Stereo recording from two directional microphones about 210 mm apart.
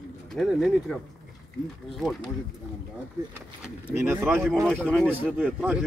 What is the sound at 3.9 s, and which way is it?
Speech, 10° right (ahead or behind).